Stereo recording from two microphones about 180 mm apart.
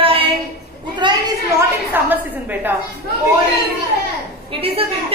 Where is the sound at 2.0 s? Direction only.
10° right (ahead or behind).